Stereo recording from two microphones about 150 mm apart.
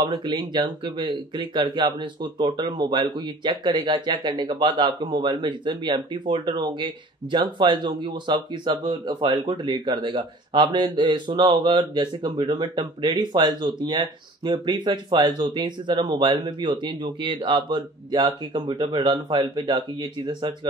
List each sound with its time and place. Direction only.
0.0 s speech: 30° right (ahead or behind)